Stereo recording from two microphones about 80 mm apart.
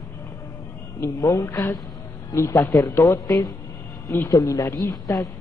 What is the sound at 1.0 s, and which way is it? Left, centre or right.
A woman's voice, left.